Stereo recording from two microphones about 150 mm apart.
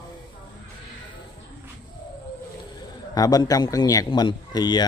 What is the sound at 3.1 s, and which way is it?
A man's voice, 25° left (ahead or behind).